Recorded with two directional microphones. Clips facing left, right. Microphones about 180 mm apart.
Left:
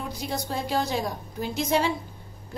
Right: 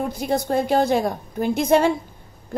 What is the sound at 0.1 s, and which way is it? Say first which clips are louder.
A woman's voice: right 9 dB; 55° right (ahead or behind).